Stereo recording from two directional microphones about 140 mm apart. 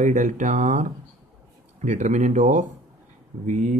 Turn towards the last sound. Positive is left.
turn(degrees=-60)  # may be behind; listen again after turning